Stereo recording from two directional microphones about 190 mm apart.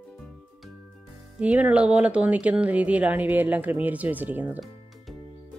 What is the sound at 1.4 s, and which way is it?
Speech, 5° right (ahead or behind).